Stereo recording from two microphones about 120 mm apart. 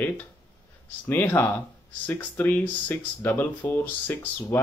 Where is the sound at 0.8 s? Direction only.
15° left (ahead or behind).